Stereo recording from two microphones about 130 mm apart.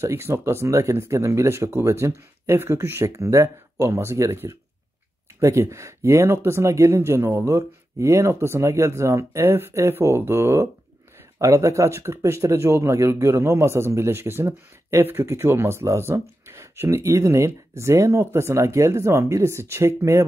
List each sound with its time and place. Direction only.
0.0 s speech: 20° right (ahead or behind)